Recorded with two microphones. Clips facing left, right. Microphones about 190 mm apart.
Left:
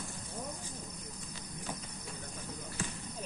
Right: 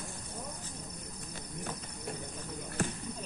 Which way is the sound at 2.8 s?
60° right (ahead or behind).